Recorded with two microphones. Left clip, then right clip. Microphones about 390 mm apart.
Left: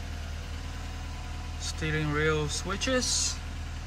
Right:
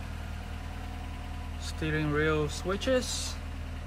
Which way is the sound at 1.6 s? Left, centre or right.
Centre.